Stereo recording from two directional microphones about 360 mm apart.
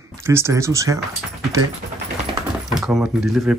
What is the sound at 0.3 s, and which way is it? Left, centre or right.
Speech, centre.